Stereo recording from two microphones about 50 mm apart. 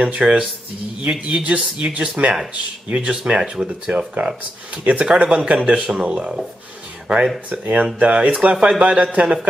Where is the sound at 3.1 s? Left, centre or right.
Centre.